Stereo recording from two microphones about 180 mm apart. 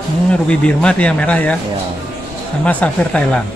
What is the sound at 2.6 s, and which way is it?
Speech, 5° left (ahead or behind).